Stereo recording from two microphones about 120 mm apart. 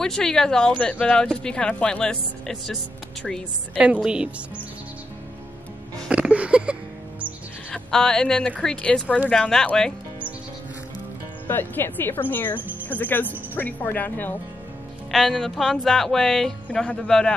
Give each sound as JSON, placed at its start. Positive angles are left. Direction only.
{"t": 0.0, "sound": "speech", "side_deg": 5}
{"t": 3.7, "sound": "a woman's voice", "side_deg": -10}
{"t": 6.0, "sound": "music", "side_deg": -10}
{"t": 7.7, "sound": "speech", "side_deg": 5}
{"t": 11.4, "sound": "speech", "side_deg": 15}
{"t": 15.0, "sound": "speech", "side_deg": 0}